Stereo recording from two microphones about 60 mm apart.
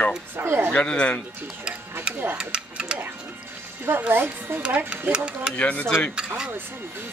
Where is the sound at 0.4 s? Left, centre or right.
Right.